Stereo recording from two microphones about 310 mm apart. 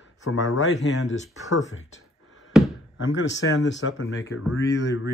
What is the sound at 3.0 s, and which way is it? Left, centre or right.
Speech, left.